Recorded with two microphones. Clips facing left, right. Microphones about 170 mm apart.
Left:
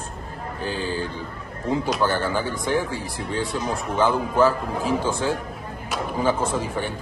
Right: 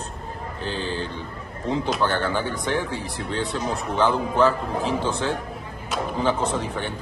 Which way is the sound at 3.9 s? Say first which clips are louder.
Left 1 dB; 5° left (ahead or behind).